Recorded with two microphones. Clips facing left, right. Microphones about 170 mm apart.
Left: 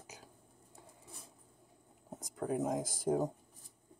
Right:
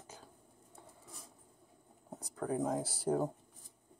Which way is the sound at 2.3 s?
25° left (ahead or behind).